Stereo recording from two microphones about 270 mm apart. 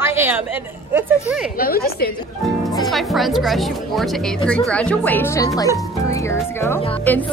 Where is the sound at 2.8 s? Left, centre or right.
Centre.